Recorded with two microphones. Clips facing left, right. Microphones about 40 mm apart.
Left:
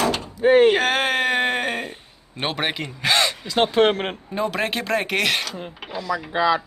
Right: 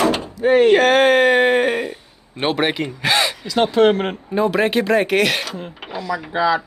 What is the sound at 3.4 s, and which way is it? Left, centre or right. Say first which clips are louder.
Speech: right 5 dB; left.